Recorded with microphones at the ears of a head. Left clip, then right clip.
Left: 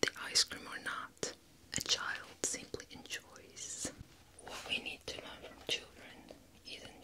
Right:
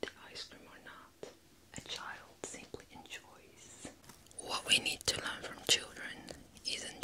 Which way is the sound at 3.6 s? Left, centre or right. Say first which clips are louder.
Left 9 dB; left.